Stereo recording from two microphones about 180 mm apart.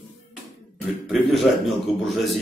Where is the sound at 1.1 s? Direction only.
Centre (ahead or behind).